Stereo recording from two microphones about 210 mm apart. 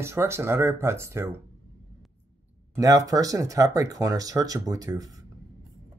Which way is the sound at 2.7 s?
15° right (ahead or behind).